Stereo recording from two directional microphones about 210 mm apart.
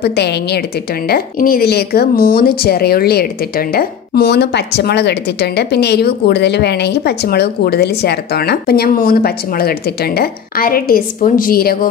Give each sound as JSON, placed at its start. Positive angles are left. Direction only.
{"t": 0.1, "sound": "speech", "side_deg": 50}